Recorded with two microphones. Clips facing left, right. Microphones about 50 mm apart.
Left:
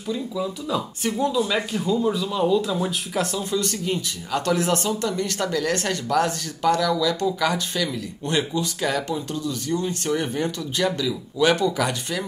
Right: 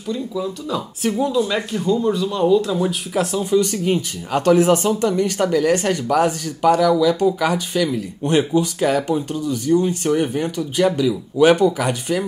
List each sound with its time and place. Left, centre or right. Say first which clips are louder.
0.1 s speech: right 3 dB; centre
3.3 s speech: right 7 dB; centre
3.8 s speech: right 6 dB; right